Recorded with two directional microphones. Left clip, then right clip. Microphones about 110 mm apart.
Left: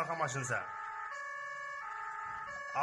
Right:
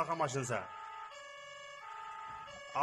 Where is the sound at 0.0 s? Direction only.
20° right (ahead or behind).